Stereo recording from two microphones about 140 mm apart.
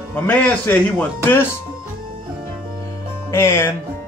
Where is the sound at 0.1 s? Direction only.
10° left (ahead or behind).